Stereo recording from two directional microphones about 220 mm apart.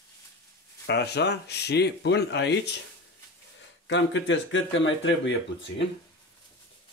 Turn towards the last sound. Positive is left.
turn(degrees=55)  # may be behind; listen again after turning